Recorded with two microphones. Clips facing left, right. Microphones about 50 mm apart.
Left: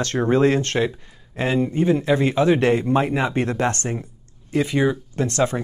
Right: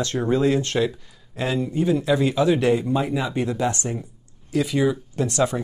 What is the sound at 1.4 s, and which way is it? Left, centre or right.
Speech, left.